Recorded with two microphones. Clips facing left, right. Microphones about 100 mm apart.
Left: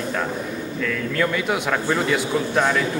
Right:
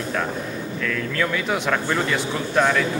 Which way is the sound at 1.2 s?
5° left (ahead or behind).